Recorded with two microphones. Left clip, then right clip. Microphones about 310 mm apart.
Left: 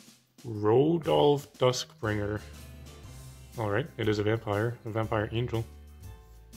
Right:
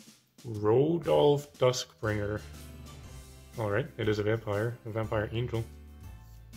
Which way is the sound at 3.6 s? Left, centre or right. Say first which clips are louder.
Left 1 dB; centre.